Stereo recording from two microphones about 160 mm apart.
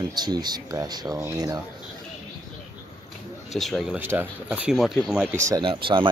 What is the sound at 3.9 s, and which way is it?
Speech, 15° right (ahead or behind).